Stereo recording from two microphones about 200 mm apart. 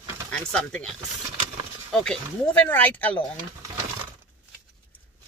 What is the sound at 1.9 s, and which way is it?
Speech, 5° left (ahead or behind).